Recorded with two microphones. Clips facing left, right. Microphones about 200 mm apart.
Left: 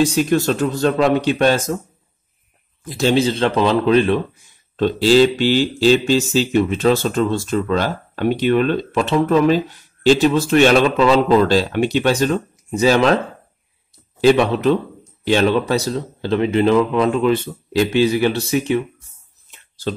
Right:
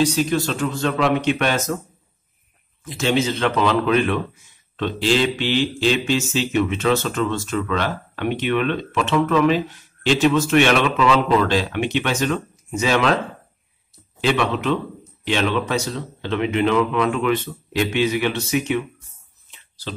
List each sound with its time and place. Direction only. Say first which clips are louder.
0.0 s speech: left 3 dB; 50° left (ahead or behind); by 1.8 s 30° left (ahead or behind)
2.8 s speech: left 4 dB; 35° left (ahead or behind)
14.2 s speech: left 7 dB; 40° left (ahead or behind)